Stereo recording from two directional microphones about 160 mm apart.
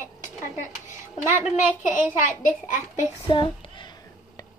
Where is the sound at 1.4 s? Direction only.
10° right (ahead or behind).